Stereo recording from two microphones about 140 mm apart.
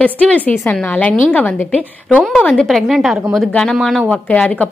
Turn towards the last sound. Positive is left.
turn(degrees=10)  # may be behind; listen again after turning